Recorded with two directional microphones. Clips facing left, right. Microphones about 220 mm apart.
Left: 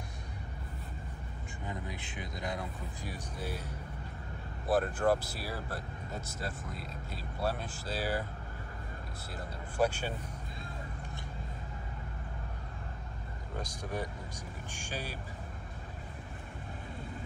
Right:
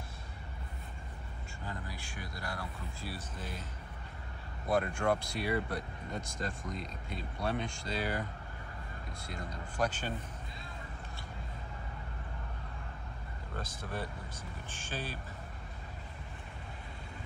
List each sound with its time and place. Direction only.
1.7 s speech: 20° left (ahead or behind)
4.6 s speech: 5° left (ahead or behind)
9.3 s speech: 5° left (ahead or behind)
13.6 s speech: 15° left (ahead or behind)